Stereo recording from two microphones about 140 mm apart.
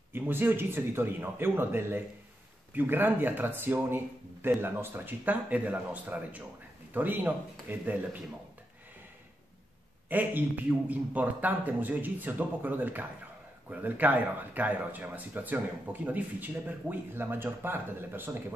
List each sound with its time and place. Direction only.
0.1 s speech: 15° right (ahead or behind)
10.0 s speech: 15° right (ahead or behind)